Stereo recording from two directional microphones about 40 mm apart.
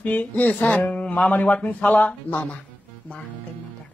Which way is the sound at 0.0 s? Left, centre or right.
Left.